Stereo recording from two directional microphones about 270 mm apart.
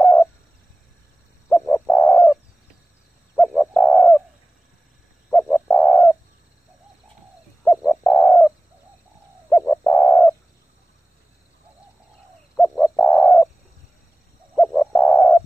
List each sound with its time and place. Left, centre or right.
0.0 s a sound: centre
1.5 s bird: centre
3.3 s bird: centre
5.3 s bird: centre
7.6 s bird: centre
12.5 s bird: centre
14.5 s bird: centre